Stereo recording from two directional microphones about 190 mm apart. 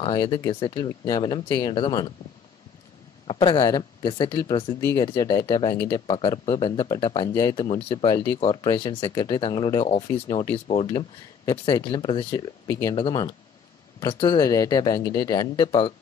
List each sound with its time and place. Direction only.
0.0 s speech: 25° left (ahead or behind)
3.3 s speech: 25° left (ahead or behind)